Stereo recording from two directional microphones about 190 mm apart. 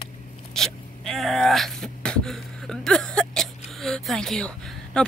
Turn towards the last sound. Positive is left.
turn(degrees=5)  # may be behind; listen again after turning